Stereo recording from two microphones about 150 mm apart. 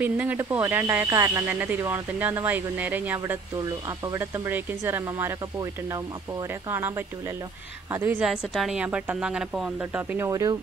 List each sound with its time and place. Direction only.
0.0 s speech: 10° right (ahead or behind)
8.3 s speech: 5° right (ahead or behind); by 10.6 s 20° right (ahead or behind)